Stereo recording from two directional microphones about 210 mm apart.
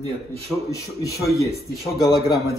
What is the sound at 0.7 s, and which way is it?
A man's voice, 15° left (ahead or behind).